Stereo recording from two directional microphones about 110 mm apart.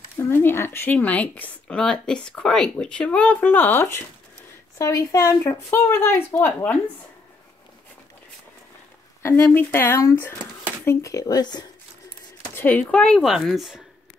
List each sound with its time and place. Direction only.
0.2 s speech: 20° left (ahead or behind)
9.2 s speech: 20° left (ahead or behind); by 11.6 s 35° left (ahead or behind)
12.5 s speech: 15° left (ahead or behind); by 13.8 s 5° right (ahead or behind)